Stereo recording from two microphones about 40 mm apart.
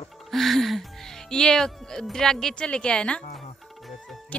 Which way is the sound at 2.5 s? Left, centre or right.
Left.